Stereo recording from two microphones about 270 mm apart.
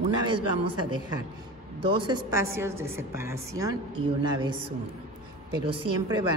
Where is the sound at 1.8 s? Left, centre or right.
Centre.